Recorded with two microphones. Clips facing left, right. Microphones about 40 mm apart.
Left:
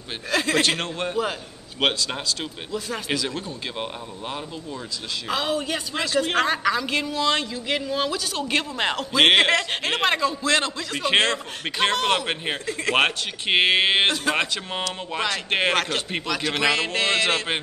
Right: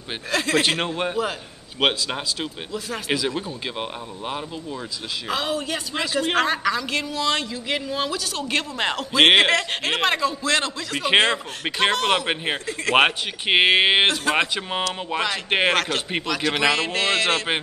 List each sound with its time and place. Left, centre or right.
0.3 s a man's voice: centre
0.7 s a man's voice: centre